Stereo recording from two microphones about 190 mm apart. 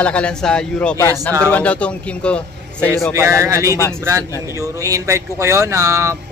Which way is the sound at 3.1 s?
15° right (ahead or behind).